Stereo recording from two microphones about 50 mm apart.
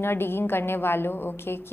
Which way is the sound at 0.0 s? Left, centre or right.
Left.